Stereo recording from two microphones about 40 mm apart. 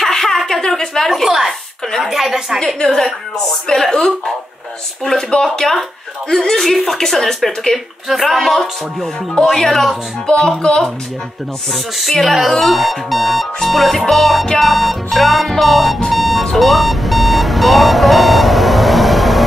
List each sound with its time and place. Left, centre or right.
0.0 s a sound: centre
2.0 s a woman's voice: centre
2.6 s speech: centre
5.3 s speech: centre
10.2 s speech: centre
11.7 s speech: centre
16.1 s alarm clock: centre